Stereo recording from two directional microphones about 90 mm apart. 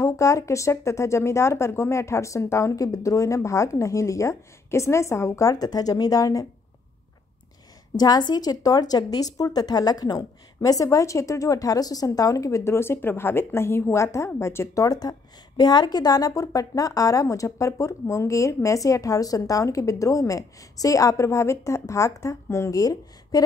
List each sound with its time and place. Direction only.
0.0 s a woman's voice: 35° left (ahead or behind)
7.9 s a woman's voice: 50° left (ahead or behind); by 14.9 s 30° left (ahead or behind)
14.9 s a woman's voice: 45° left (ahead or behind)